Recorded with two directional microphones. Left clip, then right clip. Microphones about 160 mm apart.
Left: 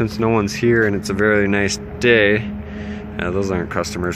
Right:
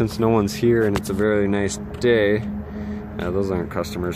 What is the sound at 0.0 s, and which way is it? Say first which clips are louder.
Speech: left 1 dB; 10° right (ahead or behind).